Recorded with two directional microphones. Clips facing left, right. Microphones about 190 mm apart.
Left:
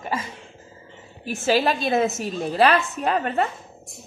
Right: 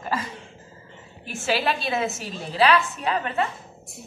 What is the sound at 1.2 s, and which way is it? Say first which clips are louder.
A woman's voice: left 4 dB; 40° left (ahead or behind).